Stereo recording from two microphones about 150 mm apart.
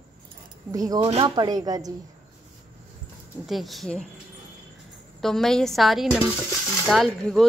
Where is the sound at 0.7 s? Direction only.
25° right (ahead or behind).